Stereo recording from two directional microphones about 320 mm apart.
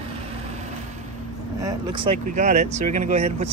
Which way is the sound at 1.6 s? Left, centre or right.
Centre.